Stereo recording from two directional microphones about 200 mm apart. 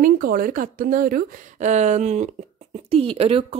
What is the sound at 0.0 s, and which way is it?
Speech, 45° right (ahead or behind).